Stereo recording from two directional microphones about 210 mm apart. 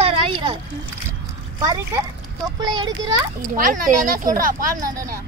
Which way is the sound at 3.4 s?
40° right (ahead or behind).